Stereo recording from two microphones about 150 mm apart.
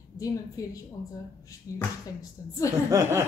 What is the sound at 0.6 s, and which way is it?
Speech, 25° left (ahead or behind).